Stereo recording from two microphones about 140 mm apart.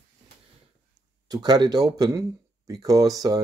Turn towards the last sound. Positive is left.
turn(degrees=-25)  # may be behind; listen again after turning